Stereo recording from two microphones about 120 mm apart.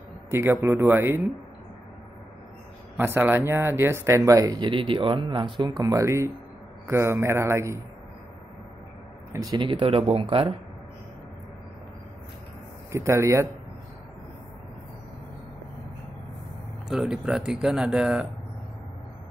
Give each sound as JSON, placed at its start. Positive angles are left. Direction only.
{"t": 0.3, "sound": "speech", "side_deg": -20}
{"t": 3.0, "sound": "speech", "side_deg": -20}
{"t": 9.3, "sound": "speech", "side_deg": -30}
{"t": 9.6, "sound": "speech", "side_deg": -45}
{"t": 12.9, "sound": "speech", "side_deg": -25}
{"t": 16.9, "sound": "speech", "side_deg": -5}